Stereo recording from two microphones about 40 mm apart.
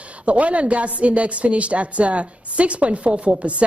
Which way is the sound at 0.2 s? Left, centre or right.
Right.